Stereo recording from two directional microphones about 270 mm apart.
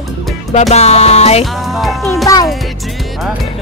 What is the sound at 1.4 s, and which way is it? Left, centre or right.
Music, centre.